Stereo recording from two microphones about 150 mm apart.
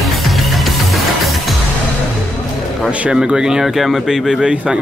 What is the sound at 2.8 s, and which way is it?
A man's voice, 5° right (ahead or behind).